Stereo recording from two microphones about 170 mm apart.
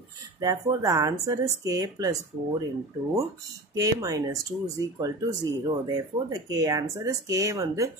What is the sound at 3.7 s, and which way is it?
Speech, 20° right (ahead or behind).